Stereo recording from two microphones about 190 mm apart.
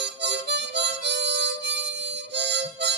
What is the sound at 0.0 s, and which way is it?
Harmonica, 65° right (ahead or behind).